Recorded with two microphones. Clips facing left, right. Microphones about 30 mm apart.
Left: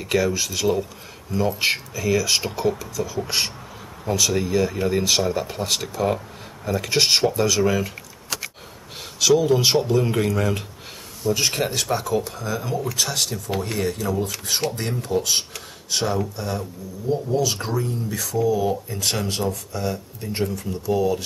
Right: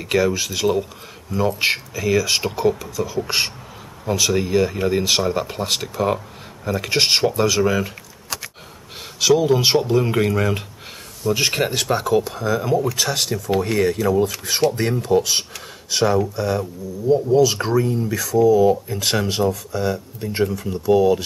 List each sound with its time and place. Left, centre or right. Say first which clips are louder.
0.0 s speech: right 2 dB; centre
7.6 s typing: right 1 dB; centre
9.2 s speech: right 2 dB; centre
11.4 s speech: right 3 dB; right; by 17.6 s centre
17.6 s speech: right 7 dB; centre
18.1 s speech: right 7 dB; centre
18.9 s speech: right 4 dB; centre